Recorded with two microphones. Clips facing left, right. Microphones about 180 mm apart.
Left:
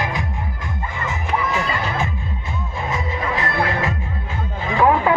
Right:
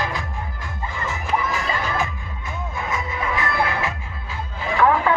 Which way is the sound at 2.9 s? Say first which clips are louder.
Left 2 dB; 30° left (ahead or behind).